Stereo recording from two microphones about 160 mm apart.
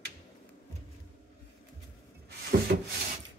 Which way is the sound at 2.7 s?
60° right (ahead or behind).